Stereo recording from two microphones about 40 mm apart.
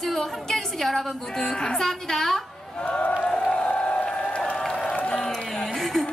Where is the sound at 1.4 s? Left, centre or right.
Centre.